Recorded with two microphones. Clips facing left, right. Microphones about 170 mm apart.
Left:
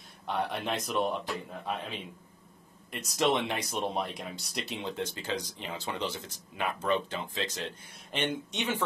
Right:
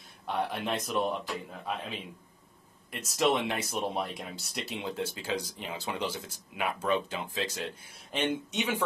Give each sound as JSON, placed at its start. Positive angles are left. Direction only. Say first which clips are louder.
{"t": 0.3, "sound": "speech", "louder": "even", "side_deg": 0}